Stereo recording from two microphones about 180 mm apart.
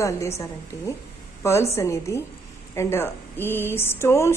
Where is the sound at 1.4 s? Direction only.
15° left (ahead or behind).